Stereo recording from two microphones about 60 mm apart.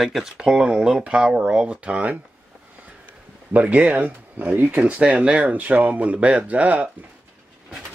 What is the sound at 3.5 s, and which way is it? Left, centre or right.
Speech, right.